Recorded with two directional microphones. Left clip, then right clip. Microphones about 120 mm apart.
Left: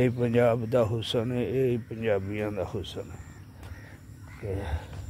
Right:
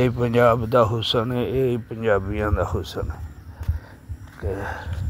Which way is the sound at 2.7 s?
25° right (ahead or behind).